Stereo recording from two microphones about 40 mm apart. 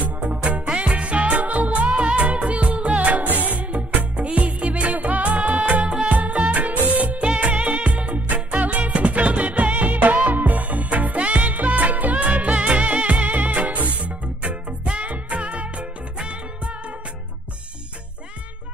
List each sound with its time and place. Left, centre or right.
0.0 s music: right
1.9 s music: right
6.0 s music of bollywood: right
8.5 s music: right
14.9 s music: right